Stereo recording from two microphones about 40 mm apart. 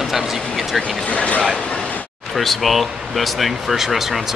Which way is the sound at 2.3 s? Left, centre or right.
Centre.